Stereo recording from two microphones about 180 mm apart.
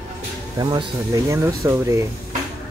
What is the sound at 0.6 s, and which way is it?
Speech, 25° right (ahead or behind).